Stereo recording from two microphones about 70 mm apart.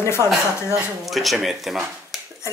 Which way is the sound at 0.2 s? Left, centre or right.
Right.